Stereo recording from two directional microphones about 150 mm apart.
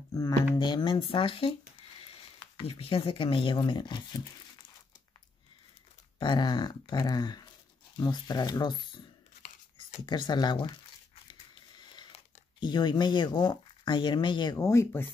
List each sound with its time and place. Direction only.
0.6 s speech: 30° left (ahead or behind)
6.1 s speech: 30° left (ahead or behind)
10.0 s speech: 30° left (ahead or behind)
11.9 s speech: 30° left (ahead or behind)